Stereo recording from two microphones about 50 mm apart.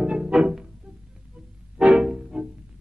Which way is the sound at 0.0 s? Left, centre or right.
Centre.